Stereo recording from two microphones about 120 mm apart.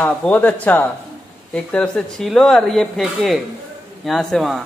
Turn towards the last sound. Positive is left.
turn(degrees=0)  # may be behind; listen again after turning